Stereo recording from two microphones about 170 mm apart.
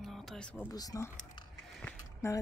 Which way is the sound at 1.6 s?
Centre (ahead or behind).